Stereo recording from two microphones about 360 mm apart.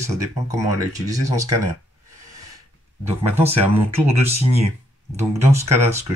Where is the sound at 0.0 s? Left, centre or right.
Centre.